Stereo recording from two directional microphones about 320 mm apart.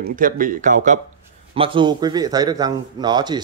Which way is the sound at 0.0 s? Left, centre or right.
Right.